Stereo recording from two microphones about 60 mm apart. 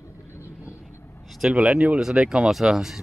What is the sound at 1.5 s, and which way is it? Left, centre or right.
Speech, right.